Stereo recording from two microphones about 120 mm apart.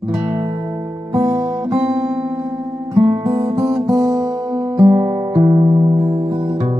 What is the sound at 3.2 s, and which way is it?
Music, 30° right (ahead or behind).